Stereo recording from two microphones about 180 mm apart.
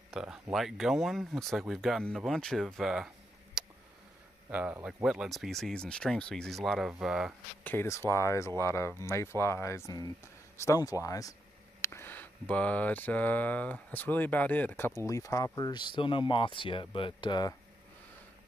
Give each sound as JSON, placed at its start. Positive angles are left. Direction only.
{"t": 0.1, "sound": "speech", "side_deg": -5}
{"t": 3.6, "sound": "a sound", "side_deg": -5}
{"t": 4.5, "sound": "speech", "side_deg": -10}
{"t": 7.6, "sound": "speech", "side_deg": 15}